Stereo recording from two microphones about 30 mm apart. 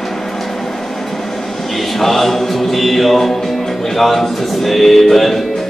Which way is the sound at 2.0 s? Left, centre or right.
Centre.